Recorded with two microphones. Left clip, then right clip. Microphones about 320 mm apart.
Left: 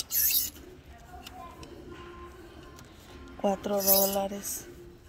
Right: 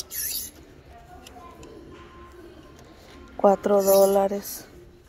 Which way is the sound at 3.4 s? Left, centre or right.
Right.